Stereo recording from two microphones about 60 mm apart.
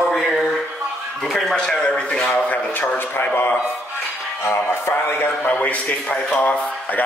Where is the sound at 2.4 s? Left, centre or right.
Left.